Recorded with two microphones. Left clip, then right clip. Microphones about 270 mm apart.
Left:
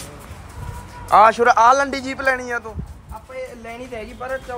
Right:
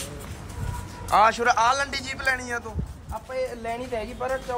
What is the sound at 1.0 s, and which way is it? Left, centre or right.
Speech, centre.